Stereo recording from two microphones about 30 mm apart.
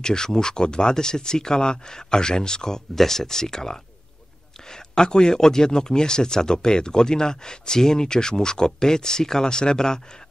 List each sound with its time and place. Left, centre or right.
0.0 s speech: left